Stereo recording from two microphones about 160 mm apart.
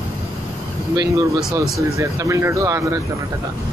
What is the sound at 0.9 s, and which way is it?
Speech, 20° right (ahead or behind).